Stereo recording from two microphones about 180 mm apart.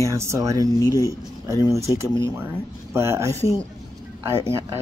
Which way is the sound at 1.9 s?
25° left (ahead or behind).